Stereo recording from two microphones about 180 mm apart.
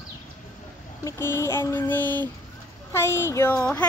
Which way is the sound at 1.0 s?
15° left (ahead or behind).